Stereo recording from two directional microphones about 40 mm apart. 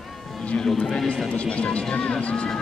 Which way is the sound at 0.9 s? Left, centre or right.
Left.